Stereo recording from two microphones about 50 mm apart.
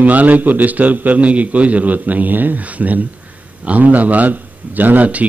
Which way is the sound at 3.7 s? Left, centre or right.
Right.